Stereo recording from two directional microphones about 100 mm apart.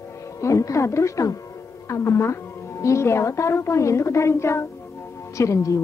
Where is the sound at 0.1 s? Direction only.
30° left (ahead or behind).